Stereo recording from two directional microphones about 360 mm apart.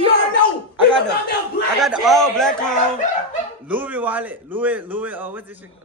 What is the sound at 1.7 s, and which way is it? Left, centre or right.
Speech, centre.